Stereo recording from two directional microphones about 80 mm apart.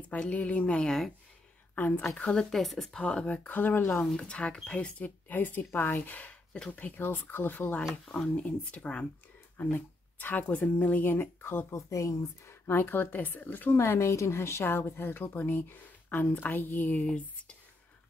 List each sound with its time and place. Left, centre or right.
0.0 s speech: centre
1.8 s speech: left
2.1 s speech: centre; by 4.0 s left
4.0 s speech: centre; by 12.7 s left
12.7 s speech: left